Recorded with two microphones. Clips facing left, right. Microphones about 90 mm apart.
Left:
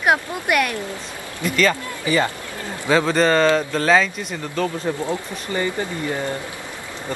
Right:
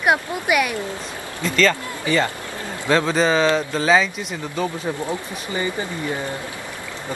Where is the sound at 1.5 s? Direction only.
15° left (ahead or behind).